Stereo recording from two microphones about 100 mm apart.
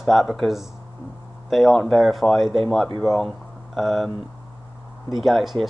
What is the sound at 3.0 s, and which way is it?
Speech, centre (ahead or behind).